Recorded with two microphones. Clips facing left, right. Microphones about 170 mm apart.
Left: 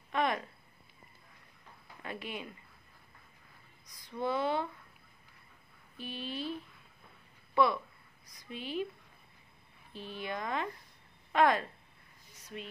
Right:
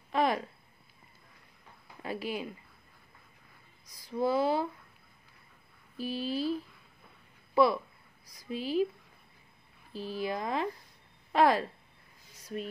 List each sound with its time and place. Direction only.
0.1 s a sound: 35° right (ahead or behind)
2.0 s speech: 35° right (ahead or behind)
3.9 s speech: 35° right (ahead or behind)
5.9 s speech: 35° right (ahead or behind)
7.5 s speech: 35° right (ahead or behind)
9.9 s speech: 35° right (ahead or behind)